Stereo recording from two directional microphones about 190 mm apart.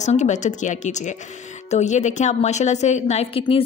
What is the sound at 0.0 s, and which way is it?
A woman's voice, 40° left (ahead or behind).